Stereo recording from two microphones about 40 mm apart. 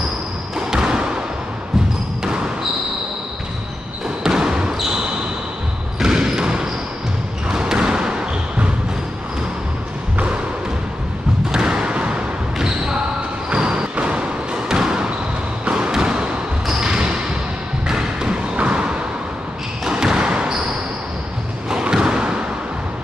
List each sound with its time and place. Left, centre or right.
0.6 s basketball bounce: centre
2.2 s basketball bounce: right
4.2 s basketball bounce: centre
6.0 s basketball bounce: centre
11.5 s thump: centre
12.5 s basketball bounce: centre
14.7 s basketball bounce: centre
15.6 s thump: right
16.8 s basketball bounce: right
17.8 s music: centre
18.6 s a sound: right
19.9 s basketball bounce: centre
21.9 s a sound: right